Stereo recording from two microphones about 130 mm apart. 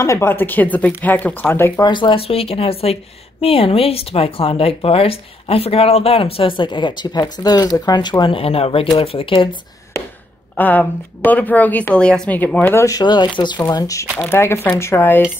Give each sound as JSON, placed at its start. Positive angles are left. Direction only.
{"t": 0.0, "sound": "a woman's voice", "side_deg": 20}
{"t": 1.8, "sound": "a woman's voice", "side_deg": 35}
{"t": 10.5, "sound": "a woman's voice", "side_deg": 10}
{"t": 12.7, "sound": "speech", "side_deg": 25}
{"t": 13.0, "sound": "speech", "side_deg": 35}
{"t": 14.1, "sound": "a woman's voice", "side_deg": 15}